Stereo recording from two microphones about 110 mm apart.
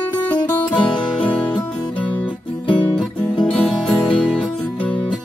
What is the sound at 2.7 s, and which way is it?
Music, 15° left (ahead or behind).